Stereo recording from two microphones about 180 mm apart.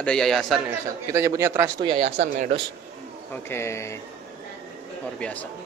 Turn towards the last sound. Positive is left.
turn(degrees=10)  # may be behind; listen again after turning